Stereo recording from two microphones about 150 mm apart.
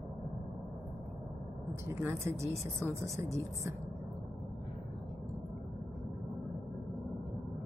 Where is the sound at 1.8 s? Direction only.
15° right (ahead or behind).